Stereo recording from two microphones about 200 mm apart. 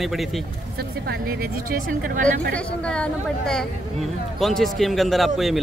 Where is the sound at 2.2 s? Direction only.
40° right (ahead or behind).